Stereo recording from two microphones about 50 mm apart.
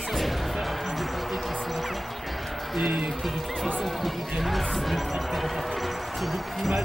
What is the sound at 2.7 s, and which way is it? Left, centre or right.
Speech, centre.